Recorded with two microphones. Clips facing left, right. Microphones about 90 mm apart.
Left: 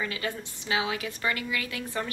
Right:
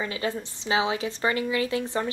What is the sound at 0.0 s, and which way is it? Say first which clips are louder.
A woman's voice: right 3 dB; 25° right (ahead or behind).